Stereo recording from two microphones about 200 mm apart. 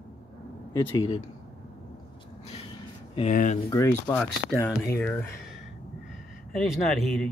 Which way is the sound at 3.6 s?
15° left (ahead or behind).